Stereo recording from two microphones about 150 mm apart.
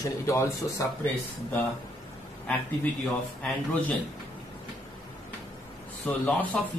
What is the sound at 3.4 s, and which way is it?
Speech, 5° left (ahead or behind).